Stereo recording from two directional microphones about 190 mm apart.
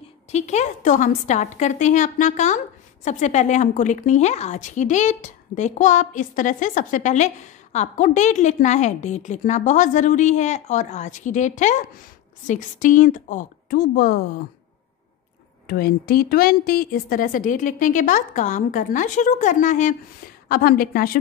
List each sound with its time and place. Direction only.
0.3 s a woman's voice: 35° left (ahead or behind); by 14.2 s 55° left (ahead or behind)
15.6 s speech: 55° left (ahead or behind)